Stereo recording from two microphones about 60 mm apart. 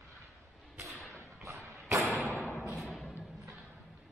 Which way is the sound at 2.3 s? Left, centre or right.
Left.